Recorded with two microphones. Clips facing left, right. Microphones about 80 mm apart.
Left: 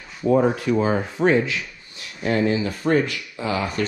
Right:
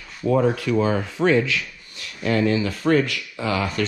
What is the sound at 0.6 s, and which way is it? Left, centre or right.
Speech, left.